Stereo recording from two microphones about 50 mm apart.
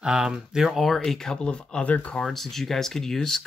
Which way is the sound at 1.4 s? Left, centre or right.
Left.